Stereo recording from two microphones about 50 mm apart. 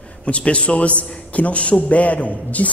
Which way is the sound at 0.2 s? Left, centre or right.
Left.